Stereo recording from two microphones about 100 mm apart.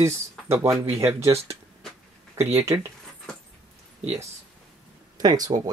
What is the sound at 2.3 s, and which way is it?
Speech, 25° right (ahead or behind).